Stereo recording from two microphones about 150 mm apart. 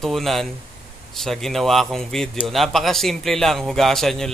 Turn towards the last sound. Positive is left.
turn(degrees=0)  # may be behind; listen again after turning